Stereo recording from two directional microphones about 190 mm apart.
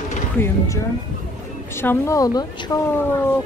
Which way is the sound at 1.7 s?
10° left (ahead or behind).